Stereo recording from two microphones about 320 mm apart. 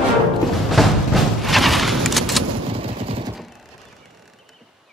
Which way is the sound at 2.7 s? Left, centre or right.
Centre.